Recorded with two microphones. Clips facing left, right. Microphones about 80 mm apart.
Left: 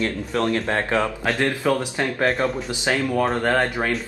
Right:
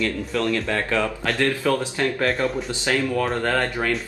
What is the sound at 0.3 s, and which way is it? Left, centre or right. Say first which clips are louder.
Speech: left 2 dB; left.